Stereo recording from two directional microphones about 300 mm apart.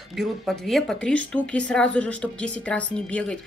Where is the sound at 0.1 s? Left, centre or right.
Centre.